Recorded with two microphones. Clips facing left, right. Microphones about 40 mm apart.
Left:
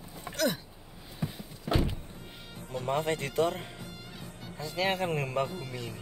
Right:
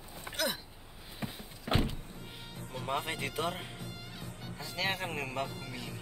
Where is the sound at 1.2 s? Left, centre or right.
Right.